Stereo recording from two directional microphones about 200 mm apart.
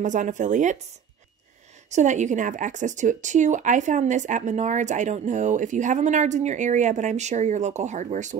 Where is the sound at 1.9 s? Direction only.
35° right (ahead or behind).